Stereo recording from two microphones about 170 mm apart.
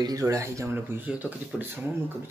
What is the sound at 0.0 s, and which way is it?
Speech, 20° right (ahead or behind).